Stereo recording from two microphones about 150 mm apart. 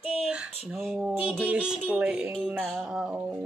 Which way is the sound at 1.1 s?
Centre (ahead or behind).